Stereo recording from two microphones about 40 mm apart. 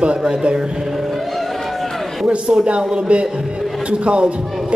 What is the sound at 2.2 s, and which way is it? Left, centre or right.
A man's voice, right.